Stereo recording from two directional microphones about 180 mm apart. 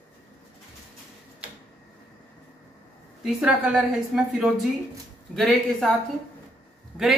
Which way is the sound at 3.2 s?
5° right (ahead or behind).